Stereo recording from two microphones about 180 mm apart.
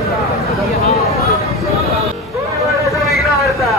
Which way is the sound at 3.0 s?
Centre (ahead or behind).